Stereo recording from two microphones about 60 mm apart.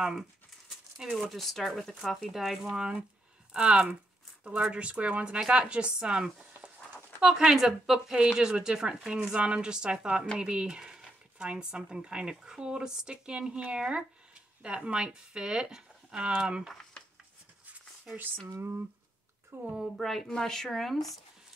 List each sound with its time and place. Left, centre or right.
0.0 s speech: centre
1.3 s speech: centre
18.1 s speech: right
19.5 s a woman's voice: right
20.0 s speech: centre